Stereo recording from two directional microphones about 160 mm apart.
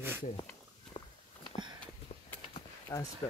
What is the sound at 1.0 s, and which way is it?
Walk, 35° left (ahead or behind).